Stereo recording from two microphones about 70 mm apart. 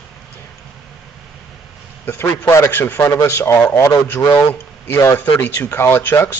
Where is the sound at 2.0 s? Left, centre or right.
Left.